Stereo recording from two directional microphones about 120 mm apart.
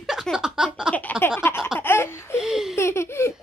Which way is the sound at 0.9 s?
15° left (ahead or behind).